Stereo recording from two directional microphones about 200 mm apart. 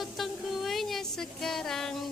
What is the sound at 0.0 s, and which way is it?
Music, centre (ahead or behind).